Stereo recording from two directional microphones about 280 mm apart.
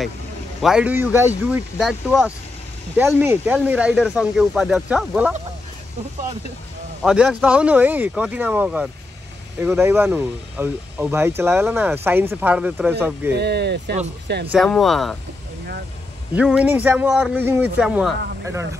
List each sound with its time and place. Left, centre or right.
0.6 s a man's voice: centre
7.0 s a man's voice: centre
13.3 s speech: right
14.5 s a man's voice: centre
16.3 s a man's voice: centre